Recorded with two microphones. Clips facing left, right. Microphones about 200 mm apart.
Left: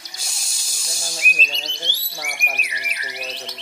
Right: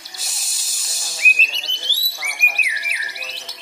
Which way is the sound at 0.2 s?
Centre (ahead or behind).